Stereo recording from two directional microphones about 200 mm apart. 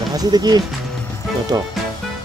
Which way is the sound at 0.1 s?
20° right (ahead or behind).